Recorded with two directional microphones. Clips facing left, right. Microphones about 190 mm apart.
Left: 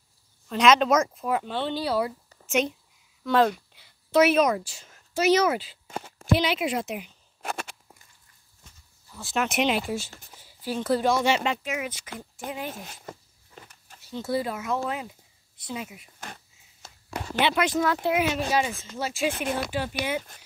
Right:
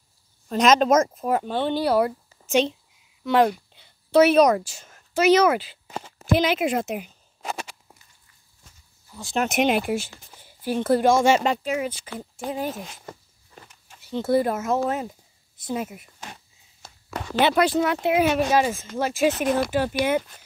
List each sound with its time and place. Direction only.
0.5 s speech: 40° right (ahead or behind)
2.4 s speech: 30° right (ahead or behind)
3.3 s speech: 20° right (ahead or behind)
4.1 s speech: 30° right (ahead or behind)
4.6 s speech: 50° right (ahead or behind)
7.4 s a sound: 55° left (ahead or behind)
9.4 s speech: 45° right (ahead or behind)
14.1 s speech: 50° right (ahead or behind)
17.4 s speech: 40° right (ahead or behind)
18.2 s speech: 50° right (ahead or behind)